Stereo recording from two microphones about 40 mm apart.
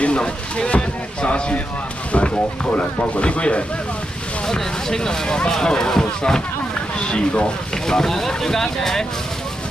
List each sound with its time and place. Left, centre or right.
0.0 s speech: left
4.5 s speech: centre
7.7 s speech: centre